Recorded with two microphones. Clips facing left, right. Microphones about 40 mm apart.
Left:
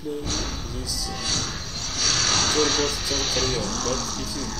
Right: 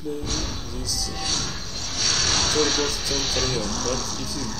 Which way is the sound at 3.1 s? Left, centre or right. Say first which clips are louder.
Even; left.